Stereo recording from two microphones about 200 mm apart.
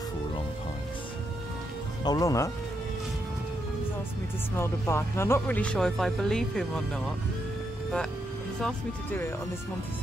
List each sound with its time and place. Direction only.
2.0 s speech: 15° left (ahead or behind)
4.6 s speech: 15° left (ahead or behind)
8.6 s speech: 10° left (ahead or behind)